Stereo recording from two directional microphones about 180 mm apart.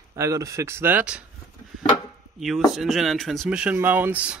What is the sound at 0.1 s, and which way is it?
Speech, 20° right (ahead or behind).